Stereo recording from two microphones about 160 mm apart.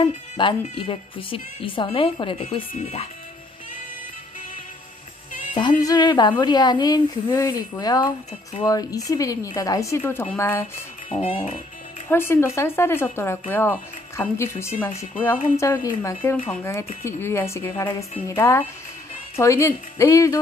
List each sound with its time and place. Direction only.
0.0 s a woman's voice: 30° left (ahead or behind)
5.6 s speech: 25° left (ahead or behind)
11.2 s a woman's voice: 35° left (ahead or behind)
12.1 s speech: 15° left (ahead or behind)